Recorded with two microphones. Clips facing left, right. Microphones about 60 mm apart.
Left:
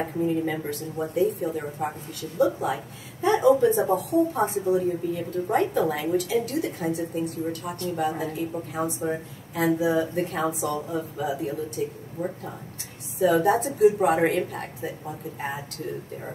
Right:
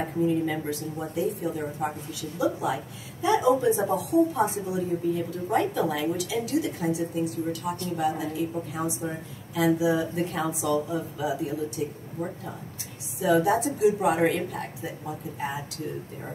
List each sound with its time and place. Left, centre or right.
0.2 s speech: left
13.2 s speech: left